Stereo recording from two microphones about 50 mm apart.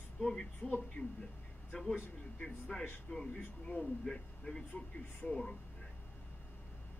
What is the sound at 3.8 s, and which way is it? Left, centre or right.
Speech, centre.